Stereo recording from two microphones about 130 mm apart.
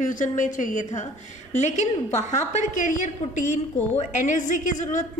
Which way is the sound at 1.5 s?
65° left (ahead or behind).